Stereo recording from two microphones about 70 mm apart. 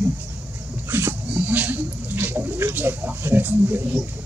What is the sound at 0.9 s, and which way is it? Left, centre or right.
Speech, right.